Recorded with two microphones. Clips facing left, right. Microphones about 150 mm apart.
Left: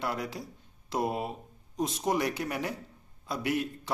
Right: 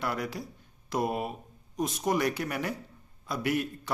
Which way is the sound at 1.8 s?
25° left (ahead or behind).